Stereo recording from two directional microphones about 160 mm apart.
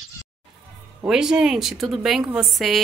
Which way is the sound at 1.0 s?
5° right (ahead or behind).